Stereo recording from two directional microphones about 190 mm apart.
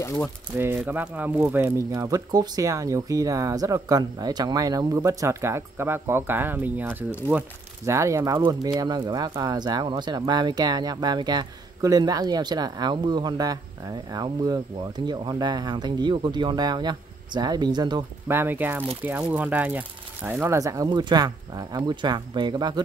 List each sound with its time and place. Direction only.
0.0 s speech: 15° left (ahead or behind)
0.8 s speech: 10° right (ahead or behind)
18.3 s speech: 10° right (ahead or behind)